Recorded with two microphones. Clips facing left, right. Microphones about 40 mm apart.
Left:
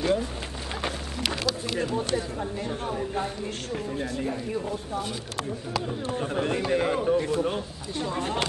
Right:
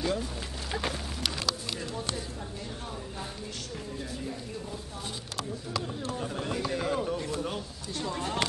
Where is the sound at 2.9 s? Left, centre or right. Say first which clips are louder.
Left 10 dB; left.